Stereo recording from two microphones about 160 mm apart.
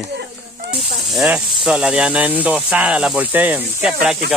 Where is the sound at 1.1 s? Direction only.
5° right (ahead or behind).